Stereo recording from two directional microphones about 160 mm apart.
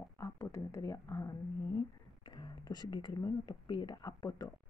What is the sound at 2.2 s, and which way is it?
Speech, 25° left (ahead or behind).